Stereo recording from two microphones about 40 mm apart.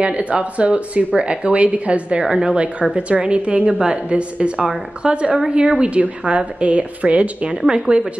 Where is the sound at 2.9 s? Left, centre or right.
Right.